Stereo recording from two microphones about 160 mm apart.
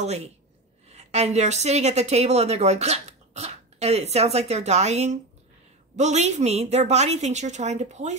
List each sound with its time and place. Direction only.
0.0 s a woman's voice: 40° right (ahead or behind)